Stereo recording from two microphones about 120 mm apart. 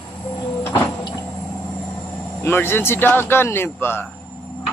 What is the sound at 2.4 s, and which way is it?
A man's voice, 20° left (ahead or behind).